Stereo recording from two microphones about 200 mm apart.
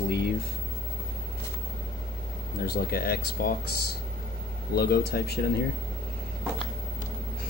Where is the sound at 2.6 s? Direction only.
50° left (ahead or behind).